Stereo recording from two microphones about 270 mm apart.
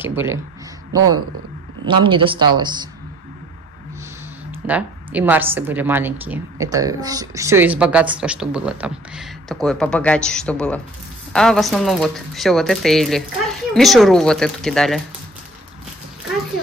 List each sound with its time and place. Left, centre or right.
0.0 s a woman's voice: centre
4.5 s a woman's voice: centre